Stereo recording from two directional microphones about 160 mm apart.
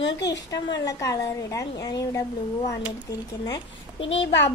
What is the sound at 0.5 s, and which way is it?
A woman's voice, 25° left (ahead or behind).